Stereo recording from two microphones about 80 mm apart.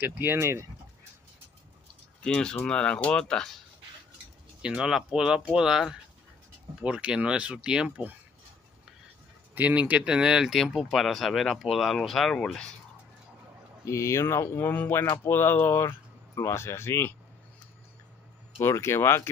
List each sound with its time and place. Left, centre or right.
0.0 s speech: right
2.2 s speech: centre
4.6 s speech: centre
9.6 s speech: centre
13.8 s speech: left
18.6 s speech: left